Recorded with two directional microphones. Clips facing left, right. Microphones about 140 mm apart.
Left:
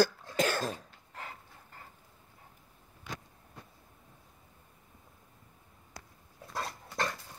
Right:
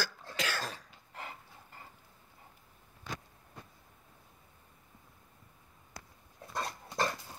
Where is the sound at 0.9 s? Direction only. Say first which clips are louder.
Even; 10° right (ahead or behind).